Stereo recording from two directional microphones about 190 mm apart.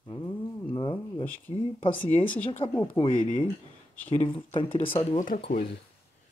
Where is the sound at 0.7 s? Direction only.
25° left (ahead or behind).